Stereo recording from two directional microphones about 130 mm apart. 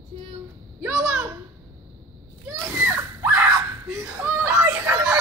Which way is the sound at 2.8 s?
15° right (ahead or behind).